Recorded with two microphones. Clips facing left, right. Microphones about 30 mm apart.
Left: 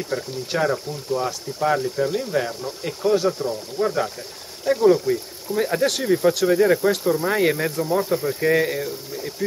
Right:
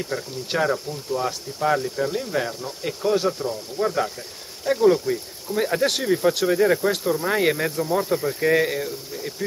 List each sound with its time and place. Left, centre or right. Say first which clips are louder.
0.1 s speech: left 5 dB; left
0.6 s speech: even; centre